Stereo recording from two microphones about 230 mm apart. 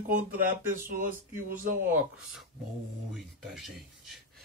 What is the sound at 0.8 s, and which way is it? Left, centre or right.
Speech, right.